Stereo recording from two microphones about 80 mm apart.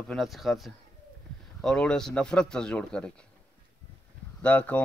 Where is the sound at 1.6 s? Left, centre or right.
Centre.